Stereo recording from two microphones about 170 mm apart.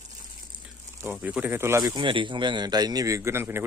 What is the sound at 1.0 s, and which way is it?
Speech, 10° right (ahead or behind).